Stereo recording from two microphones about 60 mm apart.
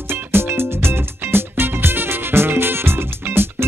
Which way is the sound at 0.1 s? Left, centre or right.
Right.